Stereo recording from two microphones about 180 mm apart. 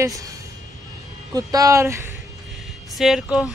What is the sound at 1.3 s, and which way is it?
Speech, 20° right (ahead or behind).